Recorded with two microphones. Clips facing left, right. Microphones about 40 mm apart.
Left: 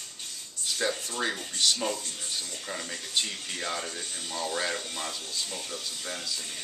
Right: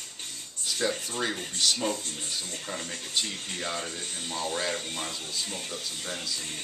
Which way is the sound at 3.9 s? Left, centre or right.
Right.